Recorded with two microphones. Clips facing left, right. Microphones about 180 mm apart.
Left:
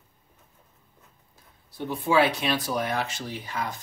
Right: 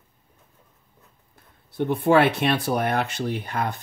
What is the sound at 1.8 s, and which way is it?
Speech, 60° right (ahead or behind).